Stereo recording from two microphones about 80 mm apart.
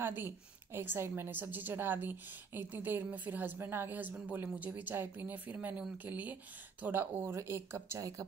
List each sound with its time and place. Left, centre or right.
0.0 s a woman's voice: right
7.3 s speech: right